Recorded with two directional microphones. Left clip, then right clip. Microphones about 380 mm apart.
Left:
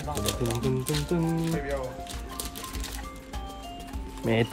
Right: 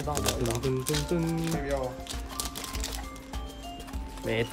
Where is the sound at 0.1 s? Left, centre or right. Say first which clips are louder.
Right 1 dB; centre.